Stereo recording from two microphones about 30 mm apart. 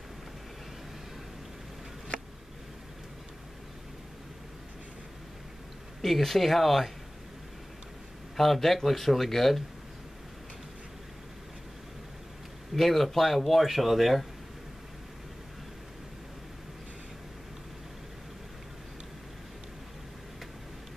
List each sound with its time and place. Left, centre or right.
6.0 s speech: centre
8.4 s a man's voice: centre
12.7 s a man's voice: centre